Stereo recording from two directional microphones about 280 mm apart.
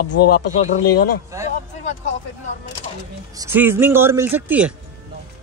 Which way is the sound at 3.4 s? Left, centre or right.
Centre.